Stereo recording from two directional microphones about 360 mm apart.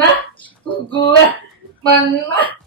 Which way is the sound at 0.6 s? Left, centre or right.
Centre.